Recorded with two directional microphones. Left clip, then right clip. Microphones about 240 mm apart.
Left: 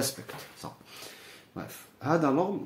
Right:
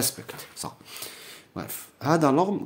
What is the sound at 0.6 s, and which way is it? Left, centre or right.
Speech, right.